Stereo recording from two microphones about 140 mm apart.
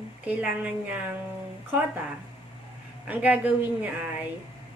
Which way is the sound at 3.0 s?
10° right (ahead or behind).